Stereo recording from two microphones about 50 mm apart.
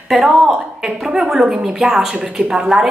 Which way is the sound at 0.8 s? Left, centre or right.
Centre.